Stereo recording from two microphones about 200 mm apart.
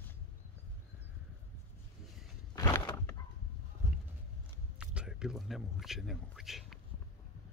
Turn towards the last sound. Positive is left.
turn(degrees=0)  # may be behind; listen again after turning